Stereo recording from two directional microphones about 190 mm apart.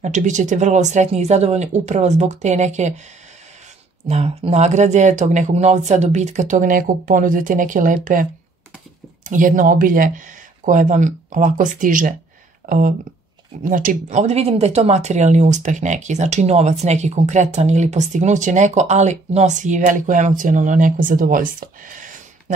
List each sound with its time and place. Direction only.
0.0 s speech: 40° right (ahead or behind)
4.1 s speech: 35° right (ahead or behind)